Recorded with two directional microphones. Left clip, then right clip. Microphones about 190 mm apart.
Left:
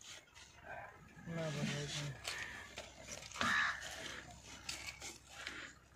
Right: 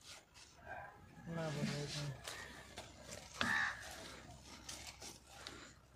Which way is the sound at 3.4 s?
50° right (ahead or behind).